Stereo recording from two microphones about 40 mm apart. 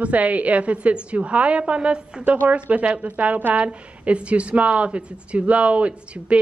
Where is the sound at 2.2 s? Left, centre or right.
Right.